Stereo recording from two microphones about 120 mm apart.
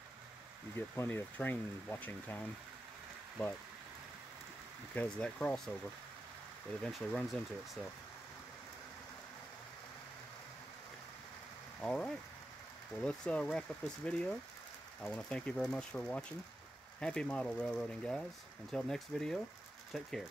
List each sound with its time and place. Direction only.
0.7 s speech: 20° left (ahead or behind)
4.9 s speech: 10° left (ahead or behind)
6.8 s speech: 5° left (ahead or behind)
11.8 s speech: 5° left (ahead or behind)